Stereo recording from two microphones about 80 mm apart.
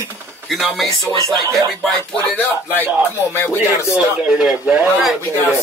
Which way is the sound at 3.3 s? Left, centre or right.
Left.